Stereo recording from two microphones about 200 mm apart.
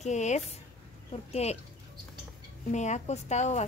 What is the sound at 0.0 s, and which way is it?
Speech, 35° left (ahead or behind).